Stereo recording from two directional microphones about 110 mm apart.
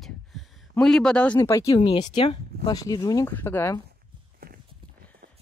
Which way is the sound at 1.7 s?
50° left (ahead or behind).